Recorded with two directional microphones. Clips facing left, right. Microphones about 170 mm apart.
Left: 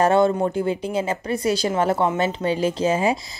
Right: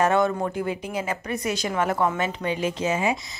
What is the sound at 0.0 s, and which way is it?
Speech, 30° left (ahead or behind).